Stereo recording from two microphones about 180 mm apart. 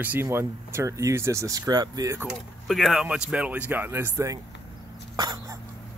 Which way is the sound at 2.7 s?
Centre (ahead or behind).